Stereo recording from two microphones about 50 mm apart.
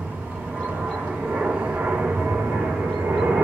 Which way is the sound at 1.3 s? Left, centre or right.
Right.